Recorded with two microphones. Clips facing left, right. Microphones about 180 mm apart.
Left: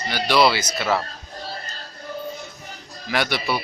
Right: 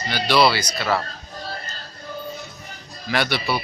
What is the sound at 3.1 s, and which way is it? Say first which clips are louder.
Speech: right 1 dB; 15° left (ahead or behind).